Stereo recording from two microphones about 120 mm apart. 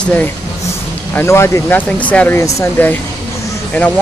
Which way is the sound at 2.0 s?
10° left (ahead or behind).